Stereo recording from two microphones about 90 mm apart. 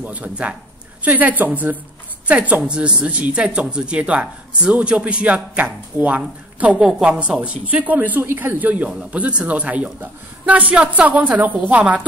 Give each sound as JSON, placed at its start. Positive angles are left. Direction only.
{"t": 0.0, "sound": "speech", "side_deg": -15}